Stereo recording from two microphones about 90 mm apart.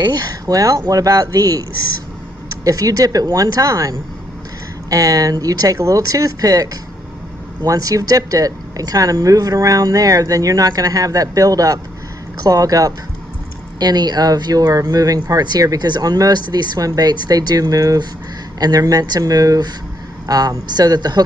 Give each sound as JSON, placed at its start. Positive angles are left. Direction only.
{"t": 0.0, "sound": "speech", "side_deg": -45}